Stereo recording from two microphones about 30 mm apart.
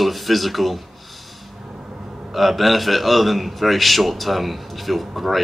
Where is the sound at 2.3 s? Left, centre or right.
Centre.